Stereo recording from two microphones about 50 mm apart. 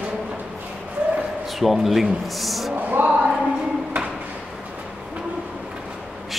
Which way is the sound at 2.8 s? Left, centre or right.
Right.